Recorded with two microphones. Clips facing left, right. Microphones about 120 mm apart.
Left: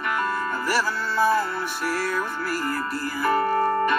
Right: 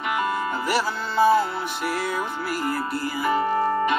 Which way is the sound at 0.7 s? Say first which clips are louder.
Left 1 dB; 15° right (ahead or behind).